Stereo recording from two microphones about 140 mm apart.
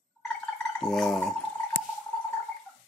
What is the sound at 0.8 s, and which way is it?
Speech, 5° left (ahead or behind).